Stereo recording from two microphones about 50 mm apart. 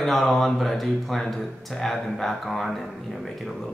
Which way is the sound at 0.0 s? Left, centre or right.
Centre.